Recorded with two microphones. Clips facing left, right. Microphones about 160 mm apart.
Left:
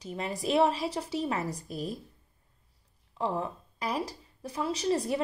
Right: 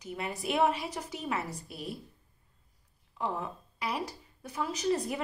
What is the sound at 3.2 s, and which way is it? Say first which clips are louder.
A woman's voice: left 3 dB; 35° left (ahead or behind).